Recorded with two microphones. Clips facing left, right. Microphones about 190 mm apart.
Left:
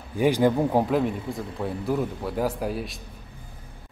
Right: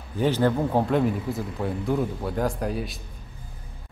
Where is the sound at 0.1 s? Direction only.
10° left (ahead or behind).